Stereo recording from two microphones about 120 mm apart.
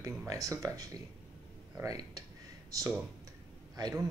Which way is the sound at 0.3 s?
30° right (ahead or behind).